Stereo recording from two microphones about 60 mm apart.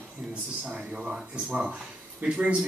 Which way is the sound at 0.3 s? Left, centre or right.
Centre.